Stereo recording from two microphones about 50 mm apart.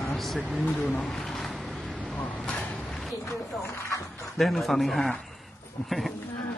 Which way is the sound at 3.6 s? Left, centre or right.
Left.